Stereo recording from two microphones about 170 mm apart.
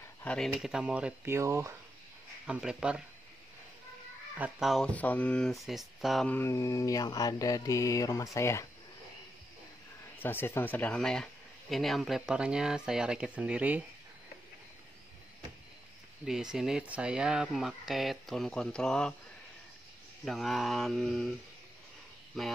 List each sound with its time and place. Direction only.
0.2 s speech: 5° left (ahead or behind); by 1.7 s 15° right (ahead or behind)
2.4 s speech: 5° right (ahead or behind)
4.4 s speech: centre (ahead or behind)
6.3 s mantra: 15° left (ahead or behind)
10.1 s speech: 10° left (ahead or behind); by 13.8 s 10° right (ahead or behind)
16.3 s speech: 5° right (ahead or behind)
20.2 s speech: centre (ahead or behind)